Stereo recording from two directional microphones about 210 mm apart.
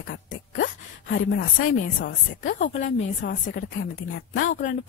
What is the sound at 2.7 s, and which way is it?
A woman's voice, 40° left (ahead or behind).